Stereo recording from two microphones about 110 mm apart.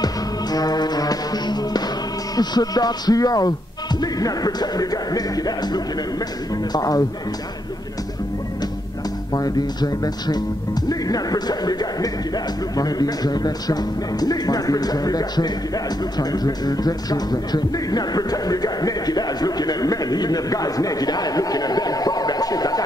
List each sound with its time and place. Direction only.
0.0 s music: 35° left (ahead or behind)
2.3 s speech: 35° left (ahead or behind)
9.3 s speech: 35° left (ahead or behind)